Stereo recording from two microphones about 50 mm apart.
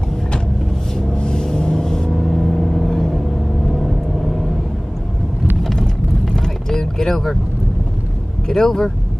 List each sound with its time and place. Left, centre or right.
0.9 s music: centre
2.1 s vehicle: centre
5.6 s vehicle: centre
8.5 s speech: centre